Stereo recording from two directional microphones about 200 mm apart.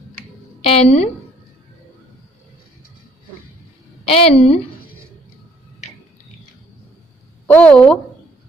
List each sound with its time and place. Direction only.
0.7 s a woman's voice: 30° left (ahead or behind)
4.0 s a woman's voice: 30° left (ahead or behind)
7.4 s a woman's voice: 5° left (ahead or behind)